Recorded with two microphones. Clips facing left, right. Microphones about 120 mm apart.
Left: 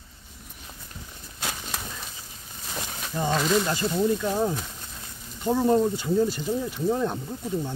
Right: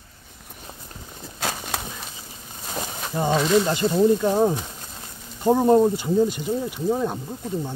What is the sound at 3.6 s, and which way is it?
Speech, 25° right (ahead or behind).